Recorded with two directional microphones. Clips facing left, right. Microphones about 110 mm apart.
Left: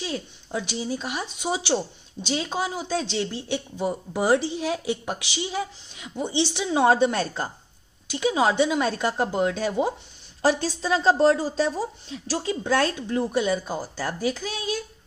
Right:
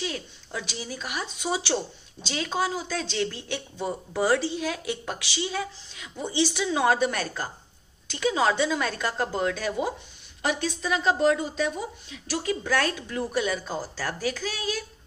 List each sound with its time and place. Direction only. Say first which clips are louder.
0.0 s speech: left 2 dB; 25° left (ahead or behind)